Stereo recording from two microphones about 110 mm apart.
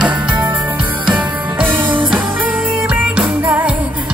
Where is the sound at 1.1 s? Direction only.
15° right (ahead or behind).